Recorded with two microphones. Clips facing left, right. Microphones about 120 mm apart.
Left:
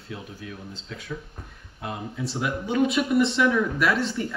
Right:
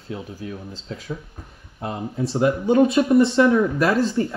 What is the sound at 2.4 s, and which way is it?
Speech, 35° right (ahead or behind).